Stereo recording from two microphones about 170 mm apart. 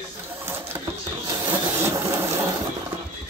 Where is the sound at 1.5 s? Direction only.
15° right (ahead or behind).